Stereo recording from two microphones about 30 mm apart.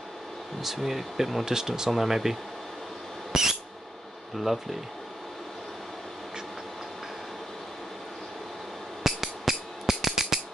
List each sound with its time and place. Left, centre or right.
0.6 s speech: centre
1.5 s speech: centre
1.9 s speech: centre
3.3 s squeak: centre
4.4 s speech: centre
9.0 s music: centre